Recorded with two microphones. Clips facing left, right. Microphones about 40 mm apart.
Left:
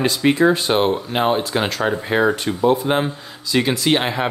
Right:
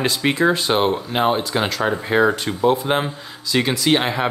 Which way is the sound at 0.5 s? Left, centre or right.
Centre.